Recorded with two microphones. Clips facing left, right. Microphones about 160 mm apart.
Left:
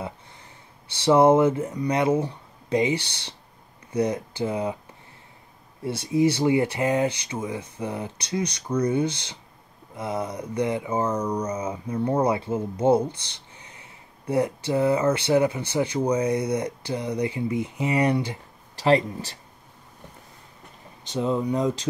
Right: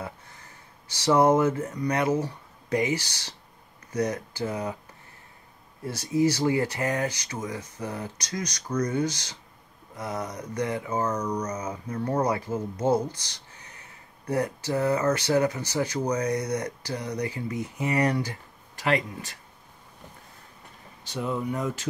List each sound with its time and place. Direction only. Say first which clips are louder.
1.0 s speech: left 4 dB; 25° left (ahead or behind)
1.7 s speech: left 3 dB; 15° left (ahead or behind)
2.0 s speech: left 3 dB; 25° left (ahead or behind)
5.9 s speech: left 2 dB; 25° left (ahead or behind)
11.1 s speech: left 3 dB; 10° left (ahead or behind)
12.3 s speech: left 3 dB; 25° left (ahead or behind)
21.1 s speech: left 5 dB; 20° left (ahead or behind)